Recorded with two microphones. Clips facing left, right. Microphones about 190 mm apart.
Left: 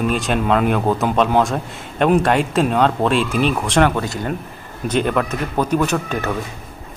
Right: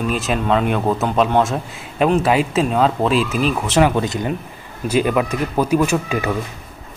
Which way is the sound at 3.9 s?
20° right (ahead or behind).